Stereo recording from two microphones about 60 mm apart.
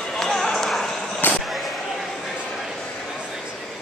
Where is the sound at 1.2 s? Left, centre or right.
Left.